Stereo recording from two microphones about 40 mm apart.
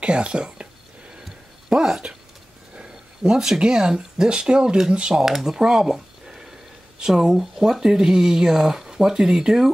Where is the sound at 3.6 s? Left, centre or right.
Right.